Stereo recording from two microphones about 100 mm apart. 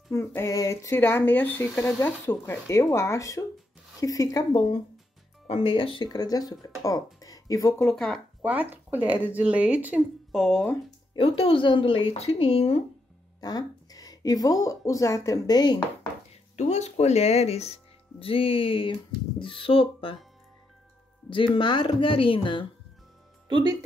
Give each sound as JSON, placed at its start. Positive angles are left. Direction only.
{"t": 0.5, "sound": "speech", "side_deg": 30}
{"t": 5.5, "sound": "speech", "side_deg": 65}
{"t": 6.0, "sound": "speech", "side_deg": 40}
{"t": 7.8, "sound": "speech", "side_deg": 5}
{"t": 8.4, "sound": "speech", "side_deg": -15}
{"t": 10.3, "sound": "speech", "side_deg": 0}
{"t": 11.1, "sound": "speech", "side_deg": 65}
{"t": 13.4, "sound": "speech", "side_deg": 40}
{"t": 16.5, "sound": "speech", "side_deg": 90}
{"t": 18.2, "sound": "speech", "side_deg": 70}
{"t": 21.5, "sound": "speech", "side_deg": 55}
{"t": 23.5, "sound": "speech", "side_deg": -45}